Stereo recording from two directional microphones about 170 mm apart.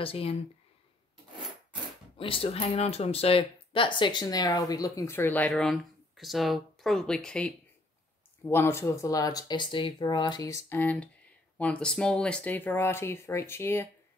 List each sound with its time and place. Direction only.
0.0 s speech: 35° left (ahead or behind)
2.1 s speech: 30° left (ahead or behind); by 13.8 s 15° left (ahead or behind)